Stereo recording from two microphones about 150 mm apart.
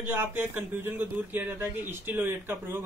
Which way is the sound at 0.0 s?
15° right (ahead or behind).